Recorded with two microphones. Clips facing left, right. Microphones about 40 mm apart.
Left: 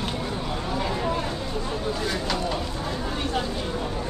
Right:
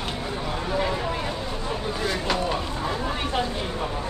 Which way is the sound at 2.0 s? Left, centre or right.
Centre.